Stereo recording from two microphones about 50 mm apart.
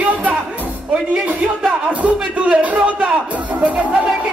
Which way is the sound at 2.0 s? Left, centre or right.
Right.